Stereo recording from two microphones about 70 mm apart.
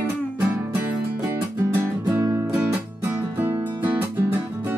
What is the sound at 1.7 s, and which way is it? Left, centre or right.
Music, right.